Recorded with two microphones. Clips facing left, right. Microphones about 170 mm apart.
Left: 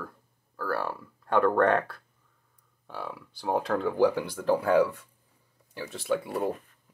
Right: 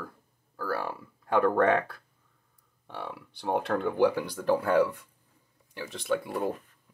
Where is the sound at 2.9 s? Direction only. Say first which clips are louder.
Left 1 dB; centre (ahead or behind).